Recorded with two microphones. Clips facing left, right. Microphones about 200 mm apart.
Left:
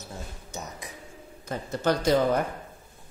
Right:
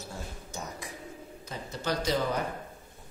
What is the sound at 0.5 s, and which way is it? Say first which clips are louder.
Speech: left 1 dB; 20° left (ahead or behind).